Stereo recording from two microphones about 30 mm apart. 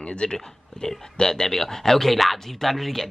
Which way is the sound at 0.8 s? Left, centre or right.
Left.